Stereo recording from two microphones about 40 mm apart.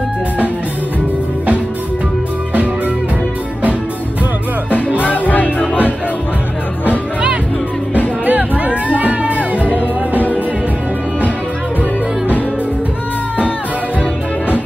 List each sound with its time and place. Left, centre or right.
4.7 s music: left
8.3 s music: right
9.8 s music: left